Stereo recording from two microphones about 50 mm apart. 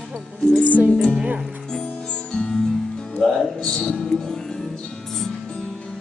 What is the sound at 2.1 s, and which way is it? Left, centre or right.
Music, left.